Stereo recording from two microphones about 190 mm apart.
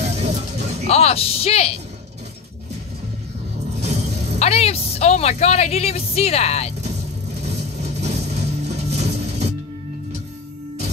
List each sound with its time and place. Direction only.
0.0 s music: 35° right (ahead or behind)
0.8 s speech: 35° left (ahead or behind)
3.8 s music: 35° right (ahead or behind)
4.4 s a woman's voice: 35° left (ahead or behind)
7.4 s music: 35° right (ahead or behind)